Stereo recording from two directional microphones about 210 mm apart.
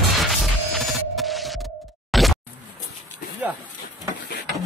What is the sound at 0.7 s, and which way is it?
Scratch, centre (ahead or behind).